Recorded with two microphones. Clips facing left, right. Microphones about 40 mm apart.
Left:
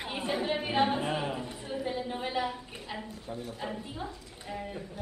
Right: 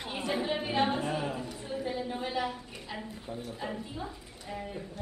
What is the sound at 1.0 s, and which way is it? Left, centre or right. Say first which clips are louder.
A woman's voice: left 1 dB; left.